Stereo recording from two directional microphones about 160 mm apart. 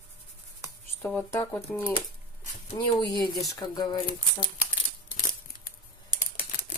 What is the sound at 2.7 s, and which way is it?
Speech, 30° left (ahead or behind).